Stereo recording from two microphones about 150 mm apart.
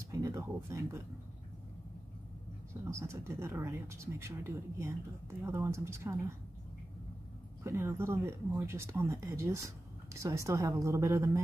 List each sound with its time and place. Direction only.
0.1 s speech: 20° right (ahead or behind)
2.8 s speech: 20° right (ahead or behind)
7.6 s speech: 15° right (ahead or behind)